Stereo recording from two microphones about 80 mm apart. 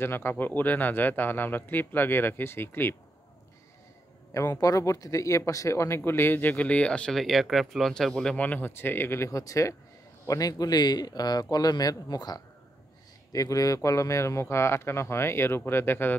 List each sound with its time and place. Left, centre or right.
0.0 s speech: left
4.3 s speech: left; by 8.4 s centre
8.4 s speech: left
13.3 s speech: left